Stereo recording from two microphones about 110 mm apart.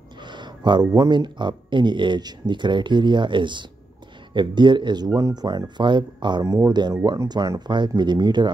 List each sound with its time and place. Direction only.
0.2 s speech: 45° right (ahead or behind)
6.4 s speech: 30° right (ahead or behind)